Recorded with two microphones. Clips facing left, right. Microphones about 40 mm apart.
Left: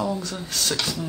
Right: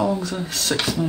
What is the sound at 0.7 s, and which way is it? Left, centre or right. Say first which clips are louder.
Speech: right 4 dB; right.